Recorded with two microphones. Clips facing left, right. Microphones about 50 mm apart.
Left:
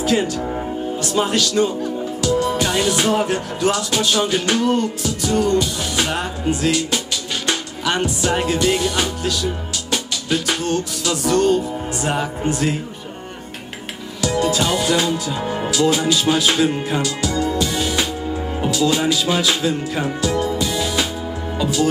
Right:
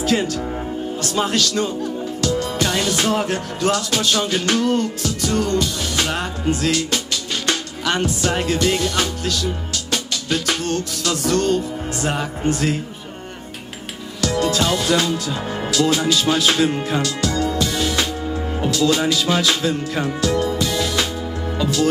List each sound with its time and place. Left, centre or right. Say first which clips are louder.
0.0 s speech: left 1 dB; centre
1.0 s music: left 1 dB; centre
14.2 s speech: even; centre